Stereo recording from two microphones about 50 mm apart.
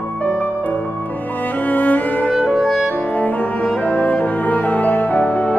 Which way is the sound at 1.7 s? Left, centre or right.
Left.